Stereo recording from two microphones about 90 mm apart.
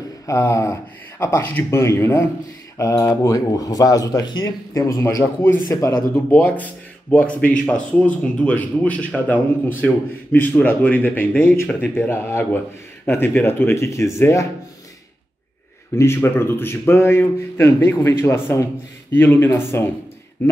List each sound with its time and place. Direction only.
0.3 s speech: 35° left (ahead or behind)
5.7 s speech: 35° left (ahead or behind)
6.3 s speech: 20° left (ahead or behind)
16.0 s speech: 25° left (ahead or behind)